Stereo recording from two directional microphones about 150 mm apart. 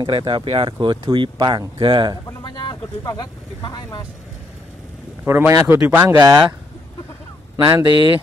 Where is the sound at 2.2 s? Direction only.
30° left (ahead or behind).